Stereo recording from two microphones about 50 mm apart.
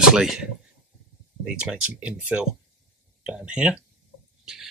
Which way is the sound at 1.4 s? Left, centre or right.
Centre.